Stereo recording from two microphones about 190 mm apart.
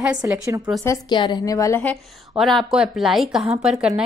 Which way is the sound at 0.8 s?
20° left (ahead or behind).